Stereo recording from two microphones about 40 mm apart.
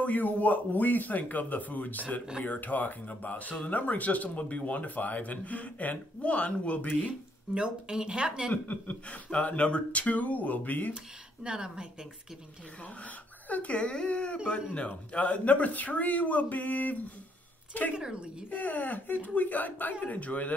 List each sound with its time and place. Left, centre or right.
0.0 s speech: left
7.5 s speech: right
8.6 s speech: left
11.4 s speech: centre
12.8 s speech: left
17.9 s speech: right
18.5 s speech: left